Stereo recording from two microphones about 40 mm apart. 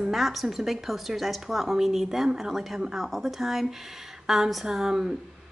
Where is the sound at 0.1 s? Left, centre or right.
Centre.